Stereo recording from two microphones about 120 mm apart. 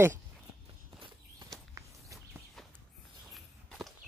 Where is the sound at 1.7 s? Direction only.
25° right (ahead or behind).